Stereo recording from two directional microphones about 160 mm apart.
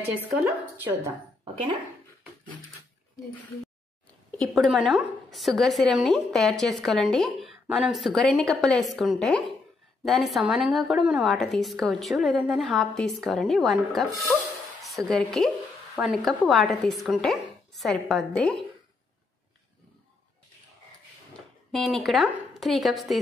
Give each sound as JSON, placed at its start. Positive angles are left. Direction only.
{"t": 0.4, "sound": "a woman's voice", "side_deg": -10}
{"t": 1.4, "sound": "speech", "side_deg": -30}
{"t": 4.6, "sound": "a woman's voice", "side_deg": 0}
{"t": 15.0, "sound": "a woman's voice", "side_deg": 0}
{"t": 21.7, "sound": "a woman's voice", "side_deg": 0}